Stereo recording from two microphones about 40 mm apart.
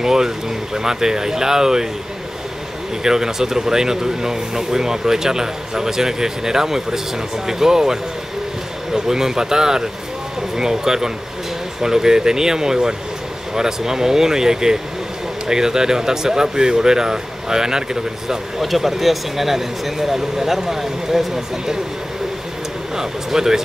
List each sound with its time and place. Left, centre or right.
0.0 s speech: centre
3.0 s speech: centre
18.3 s speech: centre
22.9 s speech: centre